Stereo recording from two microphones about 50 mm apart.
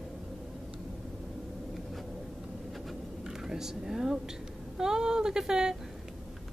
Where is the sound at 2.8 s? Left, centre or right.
Centre.